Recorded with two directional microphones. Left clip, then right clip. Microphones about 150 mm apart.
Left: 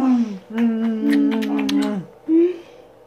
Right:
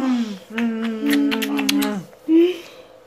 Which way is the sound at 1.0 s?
15° left (ahead or behind).